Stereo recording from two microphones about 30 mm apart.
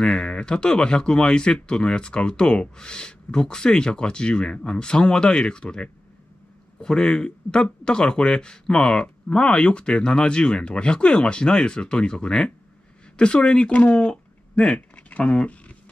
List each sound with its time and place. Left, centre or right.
0.0 s speech: left
13.4 s speech: left